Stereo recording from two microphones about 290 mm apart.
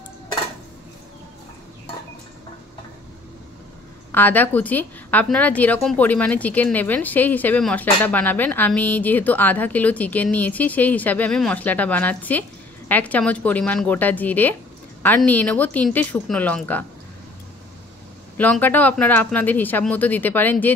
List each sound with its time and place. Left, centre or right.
4.1 s a woman's voice: centre
18.4 s a woman's voice: centre